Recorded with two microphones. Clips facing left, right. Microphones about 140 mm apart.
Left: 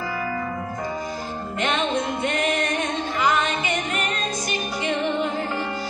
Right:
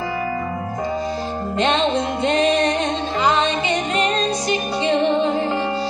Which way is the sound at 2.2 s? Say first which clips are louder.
Right 10 dB; 25° right (ahead or behind).